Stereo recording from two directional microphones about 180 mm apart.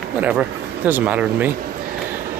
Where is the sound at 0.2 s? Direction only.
10° right (ahead or behind).